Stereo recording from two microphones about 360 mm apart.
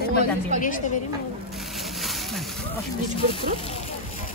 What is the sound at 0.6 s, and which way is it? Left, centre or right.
Speech, left.